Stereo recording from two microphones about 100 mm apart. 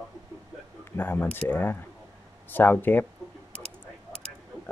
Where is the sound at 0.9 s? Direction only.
20° left (ahead or behind).